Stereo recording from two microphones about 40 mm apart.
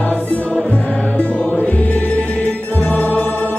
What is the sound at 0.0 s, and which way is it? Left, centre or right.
Music, left.